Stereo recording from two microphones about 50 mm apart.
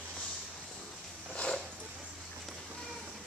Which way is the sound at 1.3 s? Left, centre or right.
Left.